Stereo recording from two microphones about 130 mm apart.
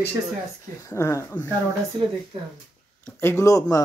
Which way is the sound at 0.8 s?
25° left (ahead or behind).